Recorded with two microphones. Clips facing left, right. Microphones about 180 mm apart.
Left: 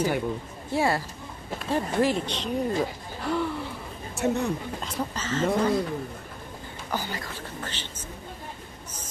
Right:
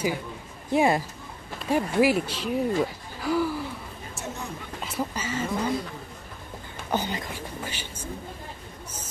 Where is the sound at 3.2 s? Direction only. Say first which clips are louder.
Right 2 dB; 5° right (ahead or behind).